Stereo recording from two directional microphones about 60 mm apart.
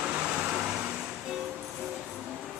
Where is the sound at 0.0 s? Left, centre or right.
Right.